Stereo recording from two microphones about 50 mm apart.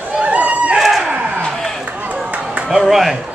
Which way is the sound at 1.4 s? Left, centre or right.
Centre.